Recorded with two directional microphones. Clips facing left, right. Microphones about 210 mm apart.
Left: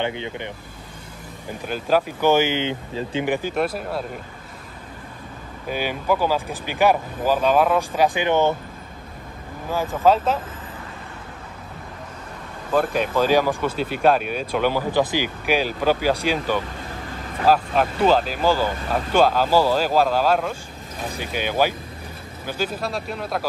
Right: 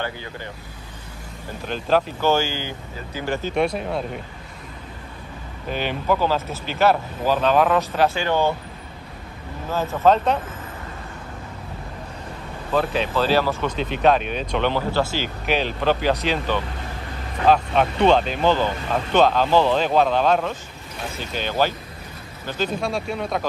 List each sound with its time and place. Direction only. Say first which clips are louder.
0.0 s speech: left 4 dB; 20° left (ahead or behind)
1.7 s speech: even; 10° left (ahead or behind); by 3.3 s 30° left (ahead or behind)
3.3 s speech: right 1 dB; 15° left (ahead or behind)
3.5 s speech: right 2 dB; 5° left (ahead or behind)
5.7 s speech: even; 10° left (ahead or behind)
9.7 s speech: even; 15° left (ahead or behind)
12.7 s speech: left 1 dB; 10° left (ahead or behind)